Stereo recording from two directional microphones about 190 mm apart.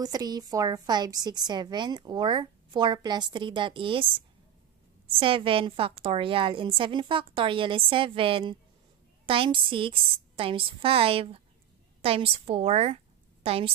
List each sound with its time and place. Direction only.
0.0 s a woman's voice: 20° right (ahead or behind)